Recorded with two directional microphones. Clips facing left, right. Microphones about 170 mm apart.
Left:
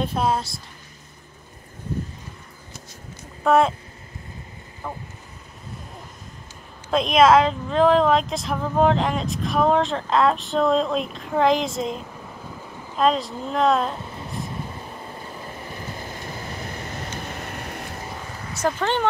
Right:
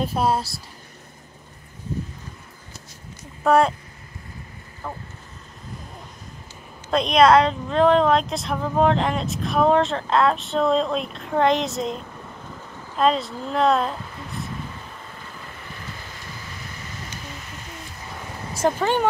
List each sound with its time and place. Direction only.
0.0 s speech: 5° right (ahead or behind)
3.4 s speech: centre (ahead or behind)
4.8 s speech: centre (ahead or behind)
6.9 s speech: centre (ahead or behind)
14.0 s vehicle: 20° left (ahead or behind)
16.3 s a sound: 45° left (ahead or behind); by 17.9 s 60° left (ahead or behind)
18.8 s speech: 10° right (ahead or behind)